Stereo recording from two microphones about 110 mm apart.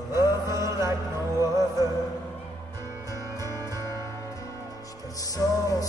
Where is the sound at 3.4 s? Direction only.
35° right (ahead or behind).